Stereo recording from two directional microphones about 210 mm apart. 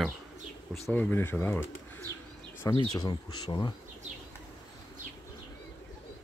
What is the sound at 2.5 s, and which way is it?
Insect, 15° left (ahead or behind).